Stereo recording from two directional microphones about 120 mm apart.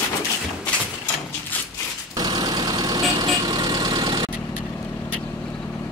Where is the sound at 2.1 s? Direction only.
35° right (ahead or behind).